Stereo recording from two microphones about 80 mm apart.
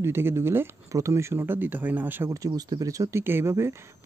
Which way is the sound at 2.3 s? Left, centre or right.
Right.